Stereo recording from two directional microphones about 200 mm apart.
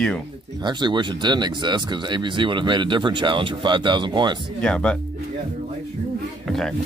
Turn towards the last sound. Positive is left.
turn(degrees=0)  # may be behind; listen again after turning